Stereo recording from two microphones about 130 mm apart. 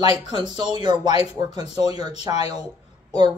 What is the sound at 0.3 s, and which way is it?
Speech, 35° right (ahead or behind).